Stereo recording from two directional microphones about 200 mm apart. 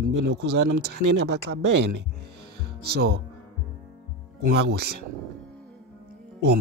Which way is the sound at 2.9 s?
50° right (ahead or behind).